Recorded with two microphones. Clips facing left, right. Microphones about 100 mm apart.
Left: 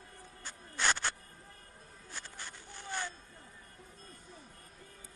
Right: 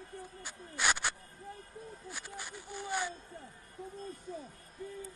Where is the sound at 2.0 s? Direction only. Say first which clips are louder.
Left 1 dB; 15° right (ahead or behind).